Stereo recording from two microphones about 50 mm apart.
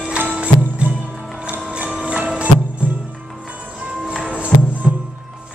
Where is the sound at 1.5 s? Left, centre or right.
Right.